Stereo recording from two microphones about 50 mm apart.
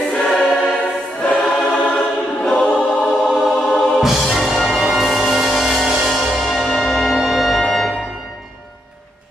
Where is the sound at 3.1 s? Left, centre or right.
Centre.